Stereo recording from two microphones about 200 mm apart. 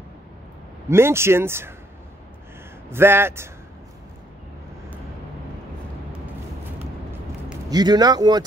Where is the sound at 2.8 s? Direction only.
10° right (ahead or behind).